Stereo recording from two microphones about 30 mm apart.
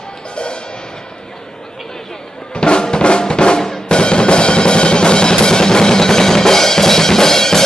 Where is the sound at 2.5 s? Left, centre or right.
Left.